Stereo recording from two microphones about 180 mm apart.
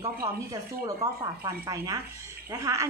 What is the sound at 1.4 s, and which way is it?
Speech, 20° right (ahead or behind).